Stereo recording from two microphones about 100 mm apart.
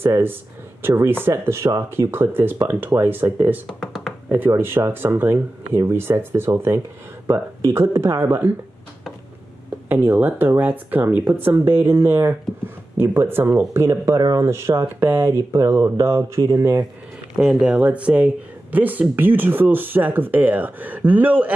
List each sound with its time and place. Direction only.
0.0 s speech: 20° right (ahead or behind)
3.6 s a sound: centre (ahead or behind)
4.3 s speech: 20° right (ahead or behind)
9.8 s speech: 20° right (ahead or behind)
13.8 s speech: 35° right (ahead or behind)
17.4 s speech: 10° right (ahead or behind)